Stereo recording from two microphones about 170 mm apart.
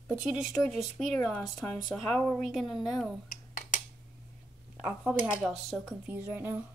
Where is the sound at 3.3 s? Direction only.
55° left (ahead or behind).